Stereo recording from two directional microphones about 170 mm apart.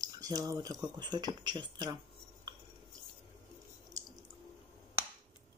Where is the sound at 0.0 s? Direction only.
20° right (ahead or behind).